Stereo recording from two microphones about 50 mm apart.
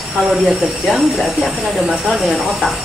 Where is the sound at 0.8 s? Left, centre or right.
Centre.